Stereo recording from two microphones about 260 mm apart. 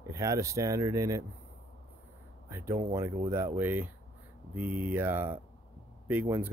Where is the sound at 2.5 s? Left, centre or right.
Centre.